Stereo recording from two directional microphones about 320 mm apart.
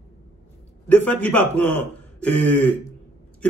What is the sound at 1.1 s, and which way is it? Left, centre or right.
Speech, centre.